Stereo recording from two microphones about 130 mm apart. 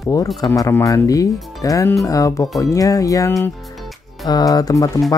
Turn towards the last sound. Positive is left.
turn(degrees=30)  # may be behind; listen again after turning